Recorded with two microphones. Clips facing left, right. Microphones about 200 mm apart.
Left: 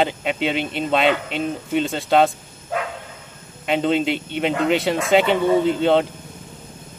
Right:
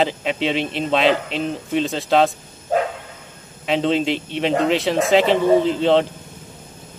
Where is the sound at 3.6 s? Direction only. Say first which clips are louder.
Even; centre (ahead or behind).